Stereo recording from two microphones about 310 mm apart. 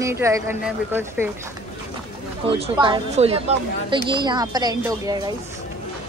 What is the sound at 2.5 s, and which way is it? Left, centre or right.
Speech, centre.